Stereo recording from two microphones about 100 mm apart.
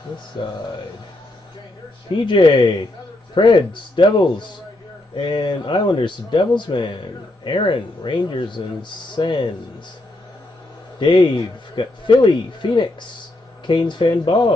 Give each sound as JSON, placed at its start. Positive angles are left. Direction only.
{"t": 2.2, "sound": "speech", "side_deg": 55}
{"t": 11.0, "sound": "speech", "side_deg": 55}